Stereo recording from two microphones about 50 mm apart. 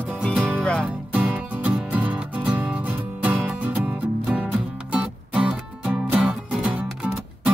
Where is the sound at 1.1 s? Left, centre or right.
Right.